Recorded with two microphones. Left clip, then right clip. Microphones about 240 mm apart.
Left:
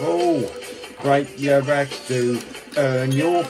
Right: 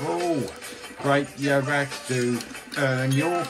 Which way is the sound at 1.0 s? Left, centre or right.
Centre.